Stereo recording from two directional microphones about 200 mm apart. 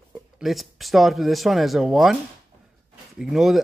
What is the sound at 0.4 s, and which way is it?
Speech, centre (ahead or behind).